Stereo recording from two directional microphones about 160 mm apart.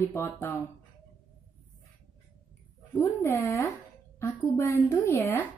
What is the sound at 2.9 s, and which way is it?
A woman's voice, 15° left (ahead or behind).